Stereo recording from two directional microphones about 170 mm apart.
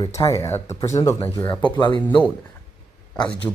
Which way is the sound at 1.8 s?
25° left (ahead or behind).